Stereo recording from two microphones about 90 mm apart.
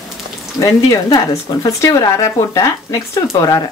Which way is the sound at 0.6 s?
45° left (ahead or behind).